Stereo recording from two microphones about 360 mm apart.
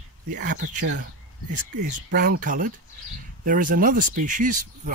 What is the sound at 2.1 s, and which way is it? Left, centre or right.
Speech, right.